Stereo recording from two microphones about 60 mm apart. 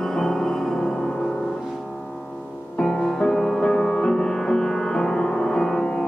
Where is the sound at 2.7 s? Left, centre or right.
Centre.